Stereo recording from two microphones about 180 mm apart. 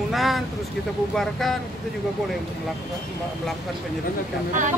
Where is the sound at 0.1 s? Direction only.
Centre (ahead or behind).